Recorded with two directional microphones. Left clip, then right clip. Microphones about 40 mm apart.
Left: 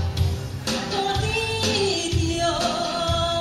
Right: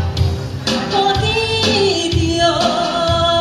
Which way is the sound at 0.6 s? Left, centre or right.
Left.